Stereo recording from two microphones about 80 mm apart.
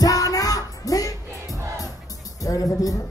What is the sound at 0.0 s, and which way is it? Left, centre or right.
Music, left.